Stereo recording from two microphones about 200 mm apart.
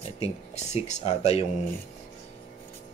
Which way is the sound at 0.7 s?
35° left (ahead or behind).